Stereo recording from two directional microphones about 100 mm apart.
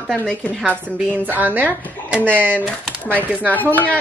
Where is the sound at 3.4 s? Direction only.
15° left (ahead or behind).